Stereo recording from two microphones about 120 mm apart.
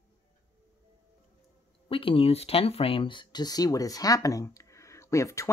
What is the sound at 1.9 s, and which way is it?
Speech, 50° left (ahead or behind).